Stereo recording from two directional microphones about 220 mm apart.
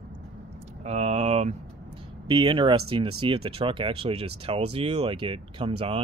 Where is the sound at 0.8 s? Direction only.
30° right (ahead or behind).